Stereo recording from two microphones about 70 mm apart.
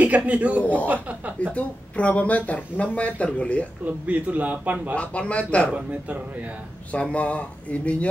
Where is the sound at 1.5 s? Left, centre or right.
Centre.